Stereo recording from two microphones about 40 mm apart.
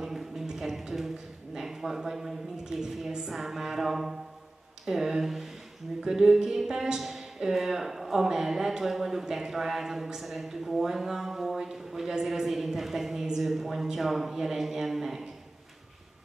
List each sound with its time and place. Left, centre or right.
0.0 s a sound: centre
3.3 s speech: centre
7.0 s speech: centre